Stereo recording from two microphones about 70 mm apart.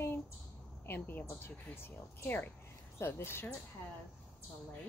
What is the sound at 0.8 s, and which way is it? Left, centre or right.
A woman's voice, left.